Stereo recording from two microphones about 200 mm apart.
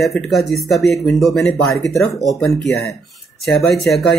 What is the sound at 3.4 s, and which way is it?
Speech, 55° left (ahead or behind).